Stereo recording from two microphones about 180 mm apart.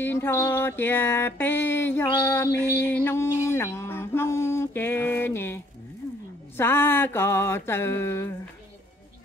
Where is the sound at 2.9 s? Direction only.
15° left (ahead or behind).